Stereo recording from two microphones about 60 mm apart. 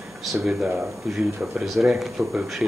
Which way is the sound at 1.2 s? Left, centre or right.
Right.